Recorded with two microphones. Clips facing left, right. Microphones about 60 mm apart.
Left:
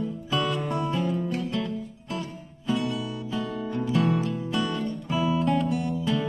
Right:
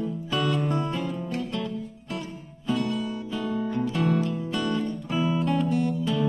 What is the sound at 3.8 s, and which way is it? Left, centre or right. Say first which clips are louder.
Music: left 2 dB; centre.